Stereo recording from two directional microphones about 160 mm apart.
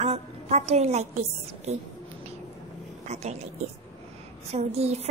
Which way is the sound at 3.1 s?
40° right (ahead or behind).